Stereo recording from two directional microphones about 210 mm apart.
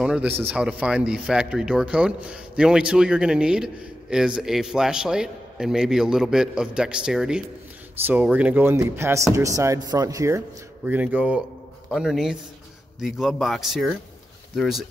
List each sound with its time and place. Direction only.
0.0 s speech: 5° right (ahead or behind)